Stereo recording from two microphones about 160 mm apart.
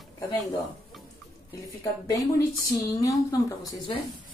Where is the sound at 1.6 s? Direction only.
20° left (ahead or behind).